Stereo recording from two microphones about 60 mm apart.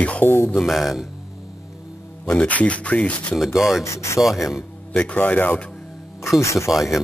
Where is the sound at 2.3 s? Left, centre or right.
Left.